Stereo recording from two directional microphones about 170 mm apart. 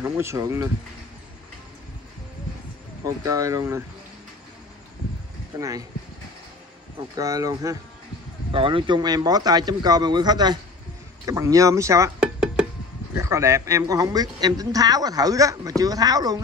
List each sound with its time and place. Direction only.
0.0 s speech: 15° right (ahead or behind)
3.3 s speech: 20° right (ahead or behind)
5.6 s speech: 20° right (ahead or behind)
7.2 s speech: 20° right (ahead or behind)
8.5 s speech: 30° right (ahead or behind)
13.1 s speech: 15° right (ahead or behind)